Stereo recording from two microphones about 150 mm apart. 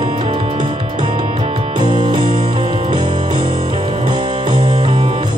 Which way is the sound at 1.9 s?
30° right (ahead or behind).